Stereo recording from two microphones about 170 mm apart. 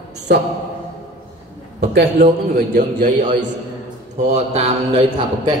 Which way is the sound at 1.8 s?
75° right (ahead or behind).